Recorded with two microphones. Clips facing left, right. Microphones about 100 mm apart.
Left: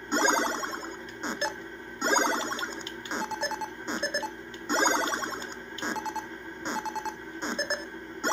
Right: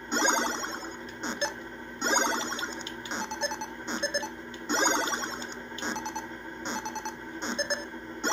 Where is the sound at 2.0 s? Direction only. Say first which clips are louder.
Left 2 dB; 10° left (ahead or behind).